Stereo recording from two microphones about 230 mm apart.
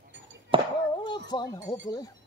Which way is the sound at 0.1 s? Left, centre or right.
Right.